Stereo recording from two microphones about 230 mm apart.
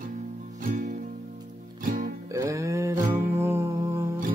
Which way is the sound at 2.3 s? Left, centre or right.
Centre.